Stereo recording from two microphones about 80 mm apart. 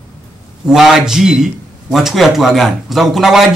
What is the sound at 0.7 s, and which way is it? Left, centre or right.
A man's voice, centre.